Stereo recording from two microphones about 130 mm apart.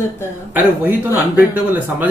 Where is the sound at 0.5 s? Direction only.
15° right (ahead or behind).